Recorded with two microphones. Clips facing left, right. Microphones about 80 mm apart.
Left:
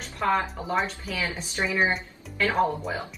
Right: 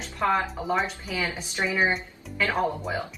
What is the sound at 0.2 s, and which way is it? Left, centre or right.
Speech, centre.